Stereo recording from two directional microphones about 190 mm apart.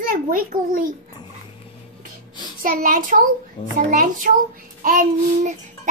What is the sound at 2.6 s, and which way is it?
A child's voice, 45° right (ahead or behind).